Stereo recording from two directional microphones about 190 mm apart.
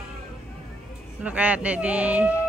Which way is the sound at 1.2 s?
5° right (ahead or behind).